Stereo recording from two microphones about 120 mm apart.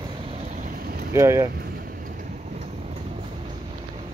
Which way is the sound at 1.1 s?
25° right (ahead or behind).